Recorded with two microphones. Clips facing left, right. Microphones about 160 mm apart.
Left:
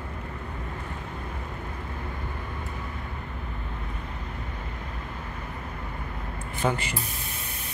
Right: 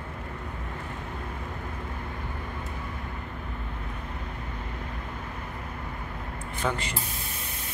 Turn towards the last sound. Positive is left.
turn(degrees=15)  # may be behind; listen again after turning